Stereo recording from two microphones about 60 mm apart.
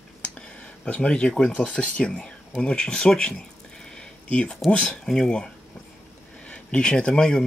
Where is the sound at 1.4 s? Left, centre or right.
Centre.